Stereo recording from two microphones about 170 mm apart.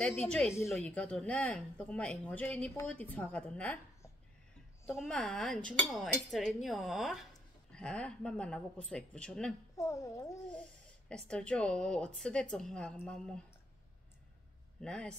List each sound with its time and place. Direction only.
0.0 s a woman's voice: 5° left (ahead or behind)
9.8 s a child's voice: 20° left (ahead or behind)
11.1 s speech: 5° left (ahead or behind)
14.8 s speech: 5° left (ahead or behind)